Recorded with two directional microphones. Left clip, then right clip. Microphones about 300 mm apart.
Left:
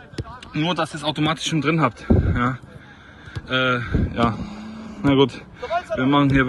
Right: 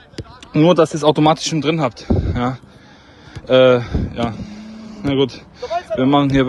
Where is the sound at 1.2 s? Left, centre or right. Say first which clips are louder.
Right 6 dB; centre.